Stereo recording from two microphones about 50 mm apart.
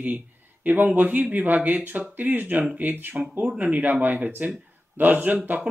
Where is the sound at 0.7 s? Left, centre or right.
Right.